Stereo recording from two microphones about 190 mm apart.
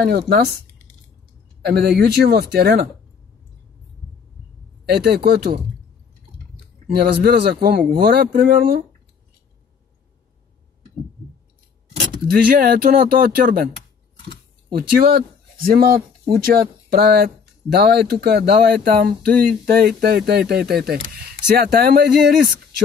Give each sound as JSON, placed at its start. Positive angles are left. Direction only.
{"t": 0.3, "sound": "speech", "side_deg": -55}
{"t": 1.6, "sound": "speech", "side_deg": -55}
{"t": 4.8, "sound": "speech", "side_deg": -55}
{"t": 6.9, "sound": "speech", "side_deg": -55}
{"t": 12.4, "sound": "speech", "side_deg": -50}
{"t": 14.8, "sound": "speech", "side_deg": -55}